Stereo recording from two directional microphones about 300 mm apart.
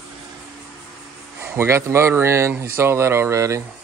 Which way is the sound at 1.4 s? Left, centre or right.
Centre.